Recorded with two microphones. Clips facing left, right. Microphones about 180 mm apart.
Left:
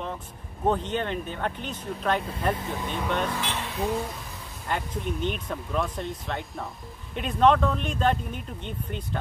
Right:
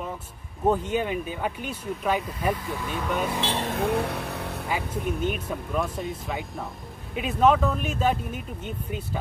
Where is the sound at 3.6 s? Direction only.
60° right (ahead or behind).